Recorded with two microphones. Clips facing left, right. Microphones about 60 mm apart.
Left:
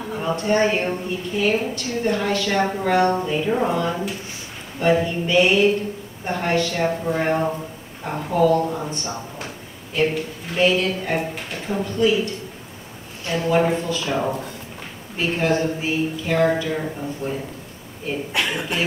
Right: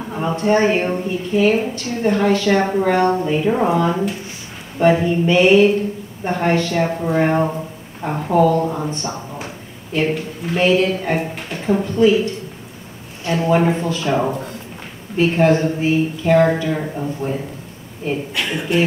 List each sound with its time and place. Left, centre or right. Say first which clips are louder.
0.1 s a woman's voice: right 4 dB; centre
3.3 s a woman's voice: right 4 dB; centre
9.9 s speech: right 2 dB; centre
13.2 s a woman's voice: right 3 dB; centre
18.4 s a sound: even; left